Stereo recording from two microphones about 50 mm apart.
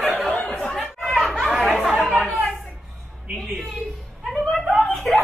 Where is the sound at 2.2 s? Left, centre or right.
Centre.